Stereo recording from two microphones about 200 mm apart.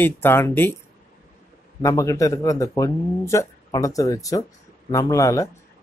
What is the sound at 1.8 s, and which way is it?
Speech, 15° left (ahead or behind).